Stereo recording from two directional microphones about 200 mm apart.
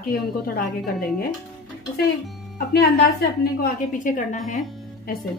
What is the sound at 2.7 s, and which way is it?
Speech, 55° left (ahead or behind).